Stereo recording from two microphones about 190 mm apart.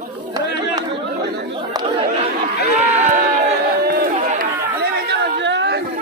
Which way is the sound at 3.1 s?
40° right (ahead or behind).